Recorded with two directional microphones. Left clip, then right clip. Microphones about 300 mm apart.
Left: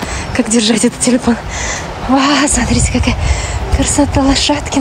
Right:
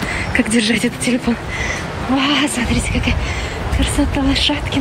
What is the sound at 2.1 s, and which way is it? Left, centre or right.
Speech, centre.